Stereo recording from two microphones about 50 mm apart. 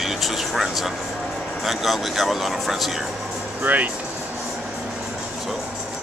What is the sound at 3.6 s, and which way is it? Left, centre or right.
Speech, right.